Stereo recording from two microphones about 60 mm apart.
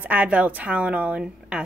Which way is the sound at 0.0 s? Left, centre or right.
Right.